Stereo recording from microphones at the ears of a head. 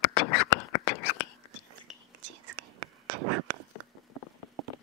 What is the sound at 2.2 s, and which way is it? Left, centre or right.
Whispering, right.